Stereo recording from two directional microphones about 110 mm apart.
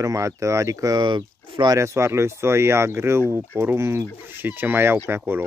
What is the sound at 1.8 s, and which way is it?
Speech, 25° right (ahead or behind).